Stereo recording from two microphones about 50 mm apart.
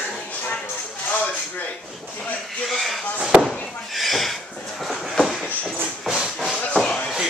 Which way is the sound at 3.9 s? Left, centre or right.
Centre.